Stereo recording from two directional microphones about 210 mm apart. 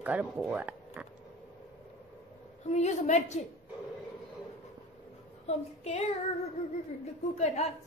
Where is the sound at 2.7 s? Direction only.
35° left (ahead or behind).